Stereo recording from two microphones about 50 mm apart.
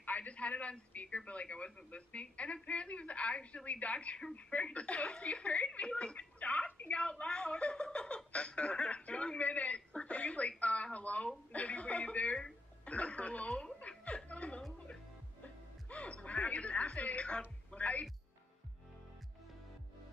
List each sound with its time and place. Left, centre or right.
0.0 s a man's voice: left
13.7 s chuckle: left
15.4 s music: left
17.7 s a man's voice: left